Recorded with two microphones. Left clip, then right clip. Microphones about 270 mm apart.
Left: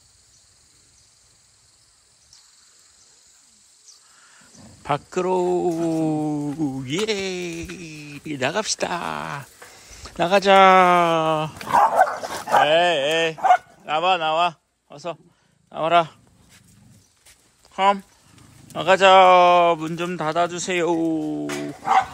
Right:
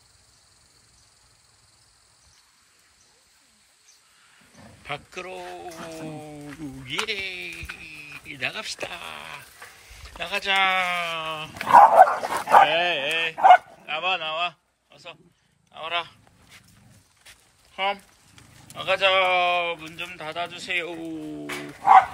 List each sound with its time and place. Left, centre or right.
4.6 s wild animals: centre
5.3 s speech: left
6.5 s speech: centre
8.8 s speech: left
10.0 s speech: centre
11.6 s dog: right
12.6 s speech: centre
17.7 s speech: centre